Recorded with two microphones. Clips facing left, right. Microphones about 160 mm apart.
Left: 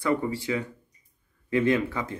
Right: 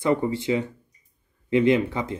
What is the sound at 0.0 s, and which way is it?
A man's voice, 25° right (ahead or behind).